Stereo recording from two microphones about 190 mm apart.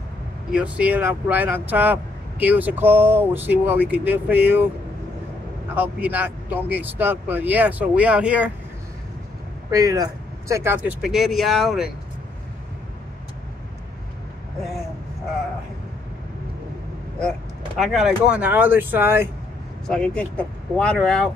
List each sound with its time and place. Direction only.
0.5 s speech: 5° right (ahead or behind)
5.8 s speech: 10° right (ahead or behind)
9.7 s speech: 20° right (ahead or behind); by 11.9 s centre (ahead or behind)
17.7 s speech: centre (ahead or behind)
19.9 s speech: 5° left (ahead or behind)